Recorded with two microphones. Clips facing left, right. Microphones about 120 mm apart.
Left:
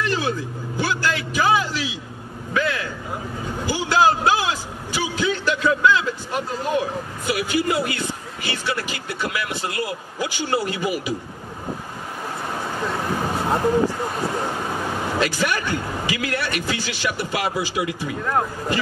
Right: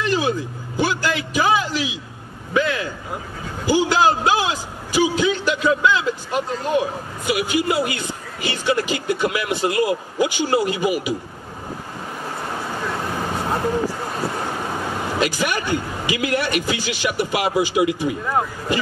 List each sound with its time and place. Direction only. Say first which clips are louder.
0.0 s vehicle: right 3 dB; 15° right (ahead or behind)
2.5 s a sound: right 3 dB; 20° right (ahead or behind)
3.6 s a man's voice: right 2 dB; 15° right (ahead or behind)
15.1 s a man's voice: right 1 dB; 15° right (ahead or behind)
18.2 s a man's voice: even; 10° right (ahead or behind)